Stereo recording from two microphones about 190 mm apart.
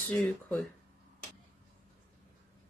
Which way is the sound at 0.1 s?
5° left (ahead or behind).